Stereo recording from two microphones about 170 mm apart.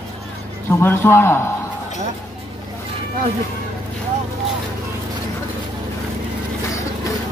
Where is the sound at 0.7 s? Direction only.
15° left (ahead or behind).